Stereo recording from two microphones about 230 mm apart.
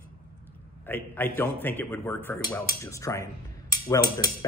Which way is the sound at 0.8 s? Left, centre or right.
Centre.